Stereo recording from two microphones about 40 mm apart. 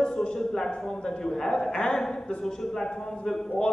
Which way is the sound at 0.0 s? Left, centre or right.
Centre.